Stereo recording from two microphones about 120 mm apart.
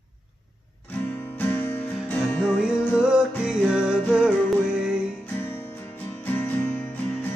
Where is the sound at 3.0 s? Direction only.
5° right (ahead or behind).